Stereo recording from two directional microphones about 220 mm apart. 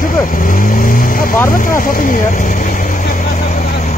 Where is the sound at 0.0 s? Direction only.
40° left (ahead or behind).